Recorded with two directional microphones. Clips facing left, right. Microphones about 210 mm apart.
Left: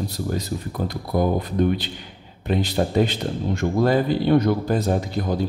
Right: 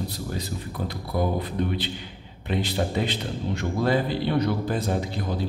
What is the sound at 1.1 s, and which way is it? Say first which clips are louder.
Speech: left 4 dB; 50° left (ahead or behind).